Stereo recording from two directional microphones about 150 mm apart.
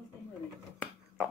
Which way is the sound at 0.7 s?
5° left (ahead or behind).